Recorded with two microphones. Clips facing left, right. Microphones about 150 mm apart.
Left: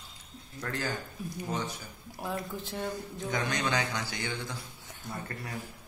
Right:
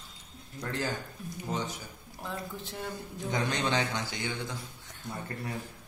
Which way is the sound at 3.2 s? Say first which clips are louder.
Right 1 dB; 25° right (ahead or behind).